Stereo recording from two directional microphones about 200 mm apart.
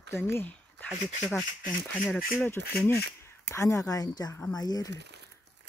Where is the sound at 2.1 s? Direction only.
5° left (ahead or behind).